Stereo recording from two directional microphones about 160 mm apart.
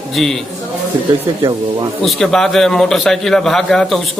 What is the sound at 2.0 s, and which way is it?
A man's voice, 5° left (ahead or behind).